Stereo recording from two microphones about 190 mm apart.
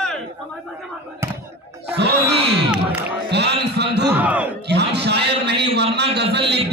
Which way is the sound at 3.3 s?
60° right (ahead or behind).